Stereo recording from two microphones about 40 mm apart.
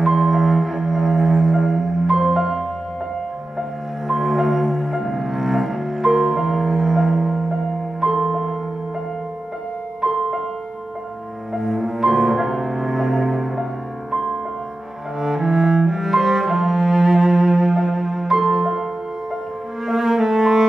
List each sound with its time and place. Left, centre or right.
0.0 s music: centre
4.1 s music: centre
10.0 s music: centre
11.5 s music: centre
15.1 s cello: centre
18.6 s music: centre
19.9 s cello: centre